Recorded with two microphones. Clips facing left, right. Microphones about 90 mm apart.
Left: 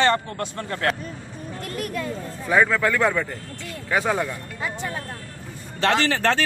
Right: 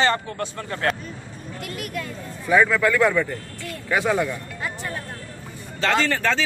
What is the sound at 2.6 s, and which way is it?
Speech, 30° left (ahead or behind).